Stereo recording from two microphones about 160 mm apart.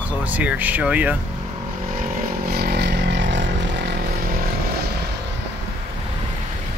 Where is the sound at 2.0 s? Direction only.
65° right (ahead or behind); by 4.4 s 85° right.